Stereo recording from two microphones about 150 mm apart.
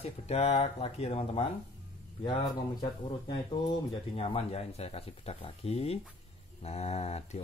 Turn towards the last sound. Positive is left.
turn(degrees=45)  # may be behind; listen again after turning